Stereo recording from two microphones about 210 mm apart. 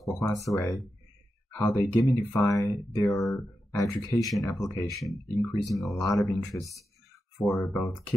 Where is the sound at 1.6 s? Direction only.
15° left (ahead or behind).